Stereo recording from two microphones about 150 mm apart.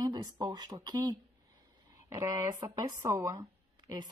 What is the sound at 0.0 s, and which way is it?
A woman's voice, 25° right (ahead or behind).